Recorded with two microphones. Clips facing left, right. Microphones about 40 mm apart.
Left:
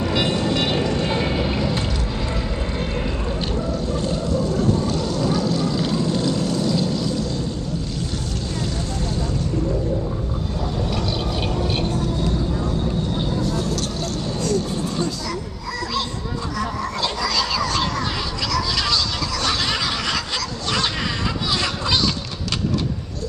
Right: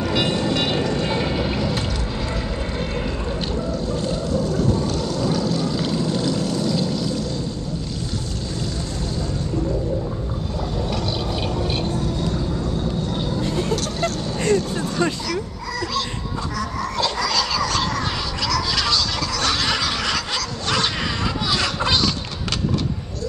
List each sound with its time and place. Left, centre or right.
0.0 s vehicle: centre
3.9 s vehicle: centre
11.8 s vehicle: centre
13.4 s vehicle: right
16.5 s a sound: centre